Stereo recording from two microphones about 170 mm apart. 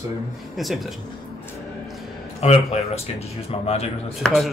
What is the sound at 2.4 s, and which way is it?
A man's voice, 35° left (ahead or behind).